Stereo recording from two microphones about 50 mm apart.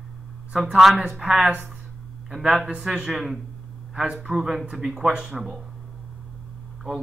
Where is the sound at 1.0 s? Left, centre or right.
Right.